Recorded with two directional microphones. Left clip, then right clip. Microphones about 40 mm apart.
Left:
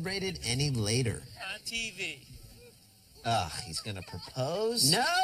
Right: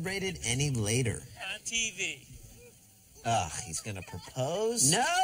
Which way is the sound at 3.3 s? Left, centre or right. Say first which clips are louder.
Even; centre.